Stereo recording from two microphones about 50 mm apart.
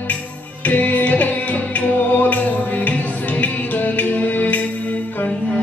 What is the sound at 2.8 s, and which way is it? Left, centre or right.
Music, left.